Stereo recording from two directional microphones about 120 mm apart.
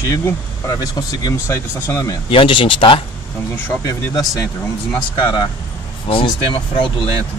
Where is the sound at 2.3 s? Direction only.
45° left (ahead or behind).